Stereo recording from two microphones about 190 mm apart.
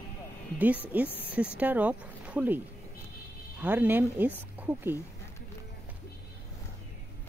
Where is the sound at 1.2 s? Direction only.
10° right (ahead or behind).